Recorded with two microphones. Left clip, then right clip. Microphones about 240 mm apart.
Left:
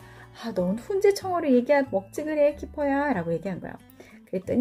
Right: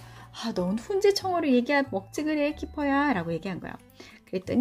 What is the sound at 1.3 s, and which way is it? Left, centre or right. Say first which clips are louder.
Speech: left 3 dB; centre.